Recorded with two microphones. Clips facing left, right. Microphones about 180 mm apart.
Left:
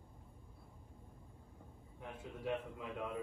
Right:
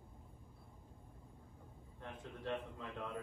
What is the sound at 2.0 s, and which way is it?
A man's voice, 5° left (ahead or behind).